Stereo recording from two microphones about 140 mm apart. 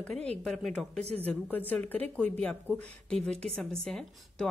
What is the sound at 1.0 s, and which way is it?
Speech, 45° right (ahead or behind).